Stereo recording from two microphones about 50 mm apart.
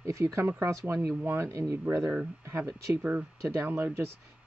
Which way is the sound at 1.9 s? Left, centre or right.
Right.